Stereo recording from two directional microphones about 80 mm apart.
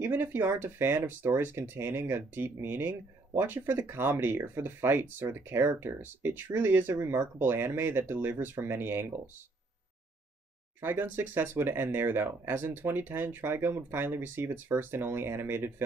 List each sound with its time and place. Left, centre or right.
0.0 s speech: right
10.8 s speech: right